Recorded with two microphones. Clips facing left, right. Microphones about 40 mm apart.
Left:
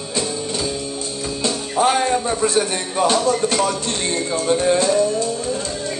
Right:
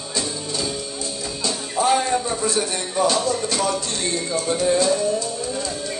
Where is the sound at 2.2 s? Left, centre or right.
Left.